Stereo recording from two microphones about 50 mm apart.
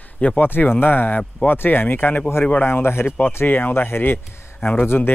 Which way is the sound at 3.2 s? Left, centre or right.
Left.